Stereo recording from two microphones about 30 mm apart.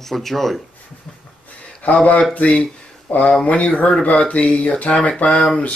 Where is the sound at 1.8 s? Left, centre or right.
Left.